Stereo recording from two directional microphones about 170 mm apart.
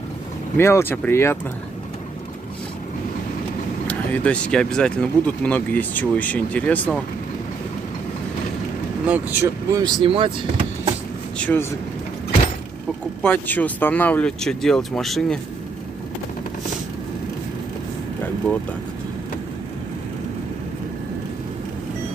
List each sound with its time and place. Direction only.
0.6 s speech: 15° left (ahead or behind)
3.8 s speech: 10° left (ahead or behind)
9.0 s speech: 10° right (ahead or behind)
10.0 s speech: 35° right (ahead or behind)
11.3 s speech: 10° left (ahead or behind)
13.2 s speech: 10° left (ahead or behind)